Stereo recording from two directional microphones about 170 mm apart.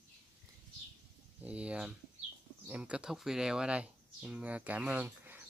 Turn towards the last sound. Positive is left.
turn(degrees=-10)  # may be behind; listen again after turning